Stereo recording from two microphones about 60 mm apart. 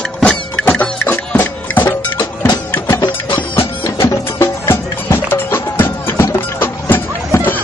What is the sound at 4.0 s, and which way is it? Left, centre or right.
Music, left.